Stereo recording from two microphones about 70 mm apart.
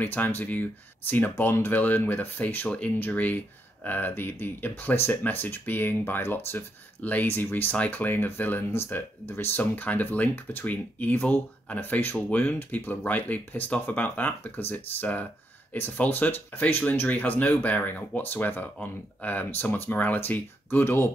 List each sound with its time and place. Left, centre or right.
0.0 s speech: left